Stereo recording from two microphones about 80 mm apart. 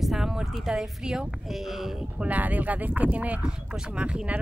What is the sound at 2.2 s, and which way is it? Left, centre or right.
Speech, centre.